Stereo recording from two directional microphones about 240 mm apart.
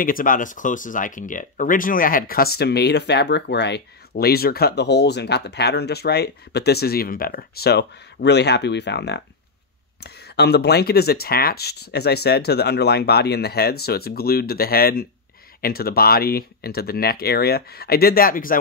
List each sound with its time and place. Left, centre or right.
0.0 s speech: left